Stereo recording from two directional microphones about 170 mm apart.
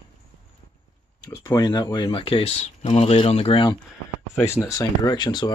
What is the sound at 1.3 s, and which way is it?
Speech, 25° left (ahead or behind).